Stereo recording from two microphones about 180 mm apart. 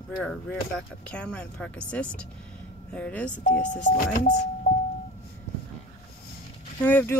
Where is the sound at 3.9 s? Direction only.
40° left (ahead or behind).